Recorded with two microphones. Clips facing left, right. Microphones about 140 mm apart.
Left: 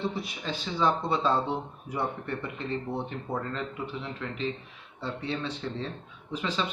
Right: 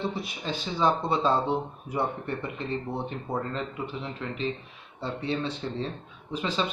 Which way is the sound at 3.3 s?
25° right (ahead or behind).